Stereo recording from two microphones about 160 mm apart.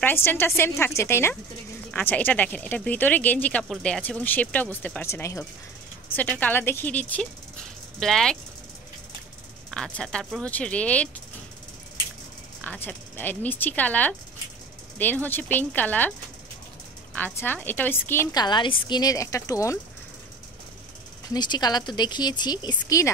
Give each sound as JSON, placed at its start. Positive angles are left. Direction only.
{"t": 0.0, "sound": "speech", "side_deg": 15}
{"t": 9.9, "sound": "speech", "side_deg": 5}
{"t": 12.6, "sound": "speech", "side_deg": 10}
{"t": 17.1, "sound": "a woman's voice", "side_deg": 10}
{"t": 21.3, "sound": "a woman's voice", "side_deg": 25}